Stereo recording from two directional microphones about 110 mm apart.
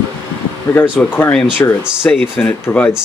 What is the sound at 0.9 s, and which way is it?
Speech, 20° left (ahead or behind).